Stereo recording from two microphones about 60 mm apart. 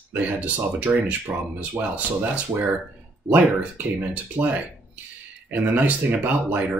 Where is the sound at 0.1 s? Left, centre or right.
Right.